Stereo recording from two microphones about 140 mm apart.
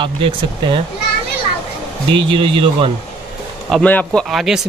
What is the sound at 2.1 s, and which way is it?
Speech, 35° right (ahead or behind).